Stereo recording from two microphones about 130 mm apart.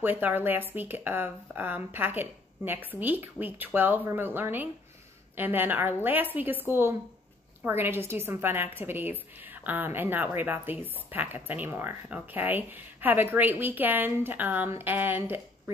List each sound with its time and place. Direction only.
0.0 s a woman's voice: 15° right (ahead or behind)